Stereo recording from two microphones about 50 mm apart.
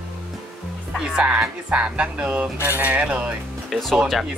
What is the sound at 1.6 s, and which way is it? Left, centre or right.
Speech, right.